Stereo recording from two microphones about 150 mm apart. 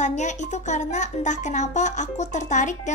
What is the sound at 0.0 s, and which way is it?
A woman's voice, 50° left (ahead or behind).